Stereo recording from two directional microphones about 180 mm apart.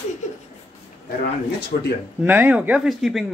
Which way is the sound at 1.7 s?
55° left (ahead or behind).